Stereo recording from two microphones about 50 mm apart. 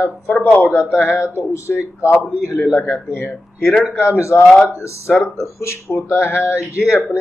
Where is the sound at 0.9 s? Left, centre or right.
Left.